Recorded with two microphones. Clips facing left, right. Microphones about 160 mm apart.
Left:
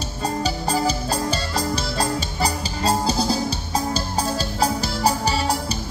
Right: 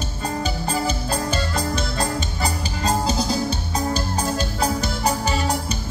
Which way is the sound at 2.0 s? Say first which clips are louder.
Left 1 dB; 35° left (ahead or behind).